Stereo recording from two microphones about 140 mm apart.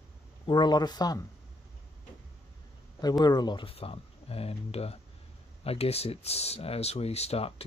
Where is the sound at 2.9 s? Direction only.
30° left (ahead or behind).